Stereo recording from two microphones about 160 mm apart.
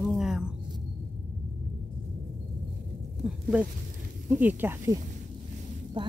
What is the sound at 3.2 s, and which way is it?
Speech, 5° right (ahead or behind).